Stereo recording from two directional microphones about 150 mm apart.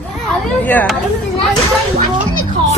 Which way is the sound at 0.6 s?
10° left (ahead or behind).